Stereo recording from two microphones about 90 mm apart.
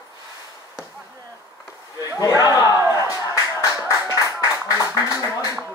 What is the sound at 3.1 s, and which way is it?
Music, 40° left (ahead or behind).